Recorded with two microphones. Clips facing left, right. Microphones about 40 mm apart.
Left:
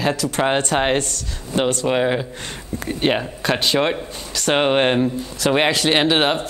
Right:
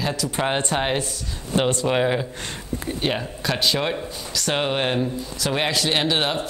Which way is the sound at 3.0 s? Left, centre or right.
Left.